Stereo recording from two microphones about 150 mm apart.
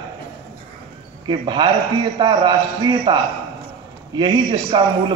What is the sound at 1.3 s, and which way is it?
A man's voice, 30° right (ahead or behind).